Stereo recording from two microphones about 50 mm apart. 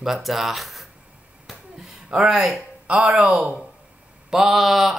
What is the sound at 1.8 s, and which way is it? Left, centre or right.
Speech, centre.